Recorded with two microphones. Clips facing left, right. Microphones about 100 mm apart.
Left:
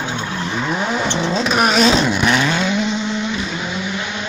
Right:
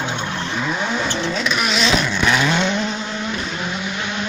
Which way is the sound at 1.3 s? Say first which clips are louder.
Left 5 dB; 40° left (ahead or behind).